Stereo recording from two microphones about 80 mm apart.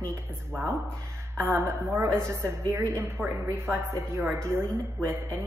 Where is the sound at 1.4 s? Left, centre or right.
Right.